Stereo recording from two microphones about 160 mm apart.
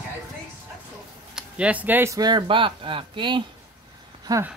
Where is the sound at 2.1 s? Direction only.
25° right (ahead or behind).